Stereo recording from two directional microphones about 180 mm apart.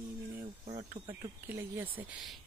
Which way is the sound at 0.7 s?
35° right (ahead or behind).